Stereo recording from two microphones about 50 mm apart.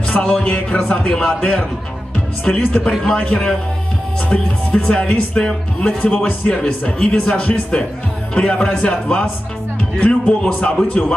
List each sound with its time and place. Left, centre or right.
0.1 s a man's voice: left
2.9 s a man's voice: centre
4.3 s speech: left